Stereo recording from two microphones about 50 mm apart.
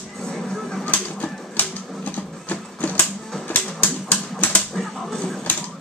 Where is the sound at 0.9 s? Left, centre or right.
Left.